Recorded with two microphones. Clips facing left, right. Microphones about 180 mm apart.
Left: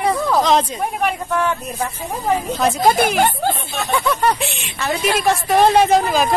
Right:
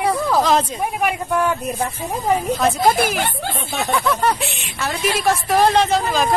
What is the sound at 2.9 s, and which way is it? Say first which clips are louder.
Speech: left 4 dB; 45° left (ahead or behind).